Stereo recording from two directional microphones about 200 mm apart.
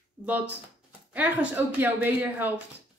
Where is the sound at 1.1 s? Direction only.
10° right (ahead or behind).